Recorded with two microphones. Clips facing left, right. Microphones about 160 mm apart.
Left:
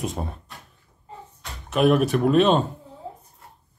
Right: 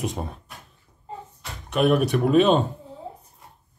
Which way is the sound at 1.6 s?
Centre (ahead or behind).